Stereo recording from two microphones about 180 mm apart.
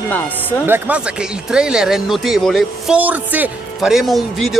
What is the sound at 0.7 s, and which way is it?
Speech, 10° right (ahead or behind).